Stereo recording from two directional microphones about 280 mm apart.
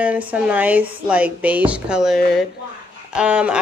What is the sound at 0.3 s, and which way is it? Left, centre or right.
Speech, centre.